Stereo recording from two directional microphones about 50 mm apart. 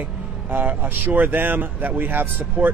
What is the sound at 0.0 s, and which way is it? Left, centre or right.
Speech, right.